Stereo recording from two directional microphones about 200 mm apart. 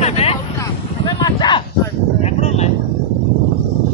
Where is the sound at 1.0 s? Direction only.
20° left (ahead or behind).